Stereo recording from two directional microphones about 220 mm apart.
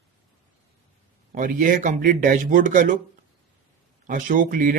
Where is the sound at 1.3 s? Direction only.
35° right (ahead or behind).